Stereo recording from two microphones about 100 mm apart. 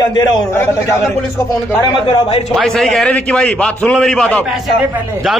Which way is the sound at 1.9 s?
55° left (ahead or behind).